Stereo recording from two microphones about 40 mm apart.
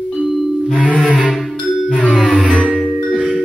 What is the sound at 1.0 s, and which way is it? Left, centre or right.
Music, left.